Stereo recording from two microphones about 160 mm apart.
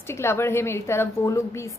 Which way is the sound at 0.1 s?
15° left (ahead or behind).